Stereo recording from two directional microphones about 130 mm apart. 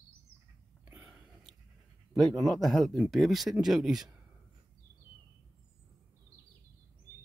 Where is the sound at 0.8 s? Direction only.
15° right (ahead or behind).